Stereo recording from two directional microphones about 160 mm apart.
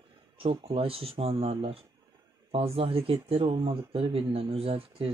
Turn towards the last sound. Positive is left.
turn(degrees=-35)  # may be behind; listen again after turning